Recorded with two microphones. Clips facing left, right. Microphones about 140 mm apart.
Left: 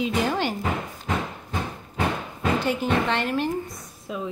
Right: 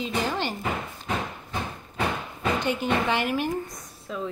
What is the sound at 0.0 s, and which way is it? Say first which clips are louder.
Speech: left 4 dB; 10° left (ahead or behind).